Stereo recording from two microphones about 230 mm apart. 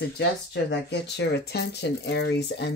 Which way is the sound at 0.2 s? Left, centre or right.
Left.